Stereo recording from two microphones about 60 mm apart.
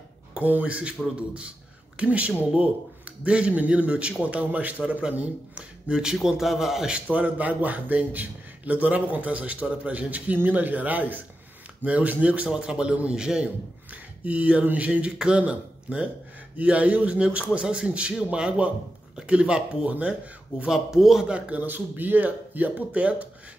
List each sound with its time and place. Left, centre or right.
0.3 s speech: right
2.0 s a man's voice: right
5.5 s a man's voice: centre
6.9 s a man's voice: right
14.2 s a man's voice: right